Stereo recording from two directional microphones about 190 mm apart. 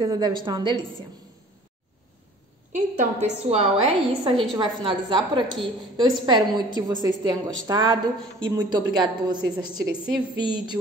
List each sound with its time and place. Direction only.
0.0 s a woman's voice: 20° right (ahead or behind)
2.7 s a woman's voice: 35° right (ahead or behind)
4.2 s a woman's voice: centre (ahead or behind)
4.6 s a woman's voice: 25° right (ahead or behind)